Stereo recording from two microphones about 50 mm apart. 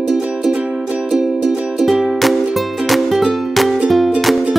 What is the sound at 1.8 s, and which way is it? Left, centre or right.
Music, centre.